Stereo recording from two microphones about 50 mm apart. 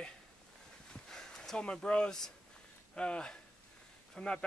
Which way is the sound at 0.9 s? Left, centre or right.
Centre.